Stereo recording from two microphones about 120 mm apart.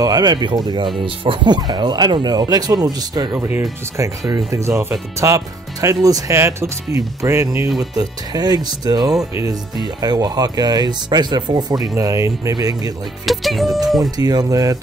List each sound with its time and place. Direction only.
0.0 s speech: 35° right (ahead or behind)
3.3 s speech: 15° right (ahead or behind)
3.9 s speech: 25° right (ahead or behind)
7.9 s speech: 35° right (ahead or behind)
13.2 s music: centre (ahead or behind)
14.1 s speech: 30° right (ahead or behind)